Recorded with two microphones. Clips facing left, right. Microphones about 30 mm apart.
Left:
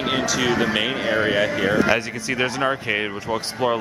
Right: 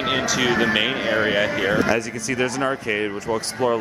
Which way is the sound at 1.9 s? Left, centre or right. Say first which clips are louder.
Left 1 dB; left.